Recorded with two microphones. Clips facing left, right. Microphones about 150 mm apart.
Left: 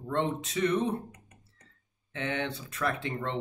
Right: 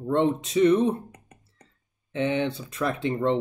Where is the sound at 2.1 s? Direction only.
20° right (ahead or behind).